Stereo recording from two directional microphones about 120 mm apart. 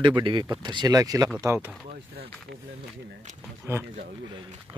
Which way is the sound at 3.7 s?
20° right (ahead or behind).